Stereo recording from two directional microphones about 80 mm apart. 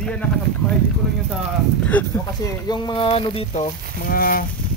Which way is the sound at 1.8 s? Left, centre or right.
Centre.